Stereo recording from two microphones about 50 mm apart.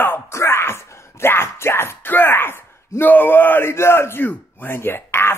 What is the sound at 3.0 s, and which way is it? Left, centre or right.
Speech, left.